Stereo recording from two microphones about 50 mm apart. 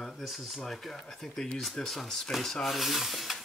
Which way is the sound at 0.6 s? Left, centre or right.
Centre.